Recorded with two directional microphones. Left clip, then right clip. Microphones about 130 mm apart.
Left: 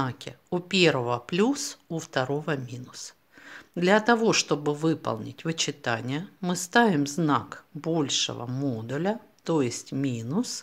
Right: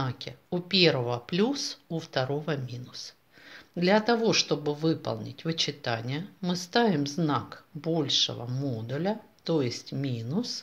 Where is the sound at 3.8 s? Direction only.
45° left (ahead or behind).